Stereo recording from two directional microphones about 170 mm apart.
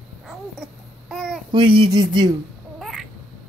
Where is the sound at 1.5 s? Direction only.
25° right (ahead or behind).